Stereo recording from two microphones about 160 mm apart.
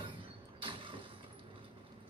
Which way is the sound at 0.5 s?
35° right (ahead or behind).